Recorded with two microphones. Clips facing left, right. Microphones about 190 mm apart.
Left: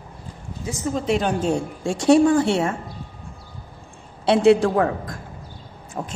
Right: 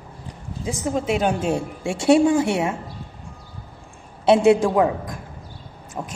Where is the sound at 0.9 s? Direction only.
10° right (ahead or behind).